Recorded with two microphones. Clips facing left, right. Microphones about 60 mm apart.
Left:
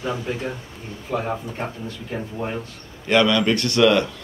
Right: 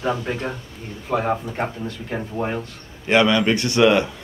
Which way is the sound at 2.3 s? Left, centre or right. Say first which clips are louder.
Right 4 dB; right.